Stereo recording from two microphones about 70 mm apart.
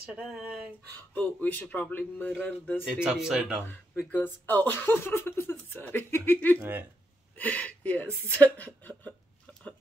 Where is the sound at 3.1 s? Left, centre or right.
Centre.